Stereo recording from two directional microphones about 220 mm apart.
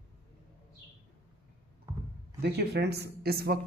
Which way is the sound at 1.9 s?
10° right (ahead or behind).